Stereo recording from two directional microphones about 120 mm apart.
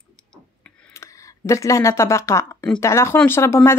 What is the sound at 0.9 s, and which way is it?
Speech, 25° left (ahead or behind).